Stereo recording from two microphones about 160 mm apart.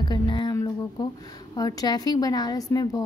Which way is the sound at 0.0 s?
25° left (ahead or behind).